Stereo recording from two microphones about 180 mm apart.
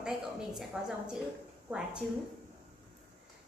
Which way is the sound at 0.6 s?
Centre (ahead or behind).